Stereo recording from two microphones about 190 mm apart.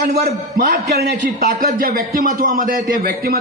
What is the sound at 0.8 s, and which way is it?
Speech, 60° right (ahead or behind).